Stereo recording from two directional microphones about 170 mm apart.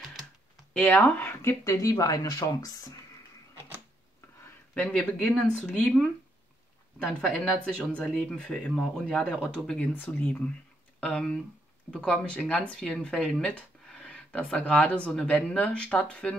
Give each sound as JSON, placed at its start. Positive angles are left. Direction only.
{"t": 0.0, "sound": "computer keyboard", "side_deg": 0}
{"t": 0.8, "sound": "speech", "side_deg": 10}
{"t": 4.7, "sound": "speech", "side_deg": 5}
{"t": 7.2, "sound": "speech", "side_deg": 5}